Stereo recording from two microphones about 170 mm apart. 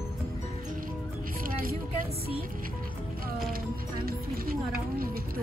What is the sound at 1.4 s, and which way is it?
Music, 55° right (ahead or behind).